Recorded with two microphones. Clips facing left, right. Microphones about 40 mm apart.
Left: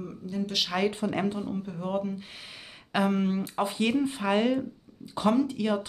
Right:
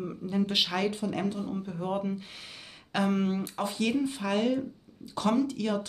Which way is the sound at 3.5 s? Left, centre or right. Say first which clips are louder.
Left 3 dB; left.